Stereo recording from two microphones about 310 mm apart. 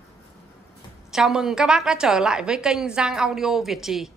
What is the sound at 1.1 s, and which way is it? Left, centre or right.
A woman's voice, centre.